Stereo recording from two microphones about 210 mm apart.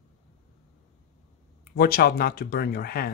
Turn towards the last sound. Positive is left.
turn(degrees=45)  # may be behind; listen again after turning